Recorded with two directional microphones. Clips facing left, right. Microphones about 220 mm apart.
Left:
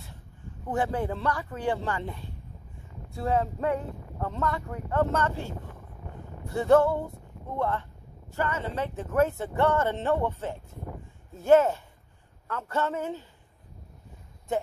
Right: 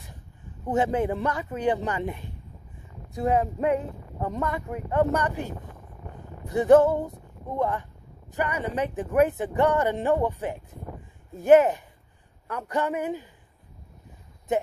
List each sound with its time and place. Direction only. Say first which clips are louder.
0.7 s speech: right 4 dB; 20° right (ahead or behind)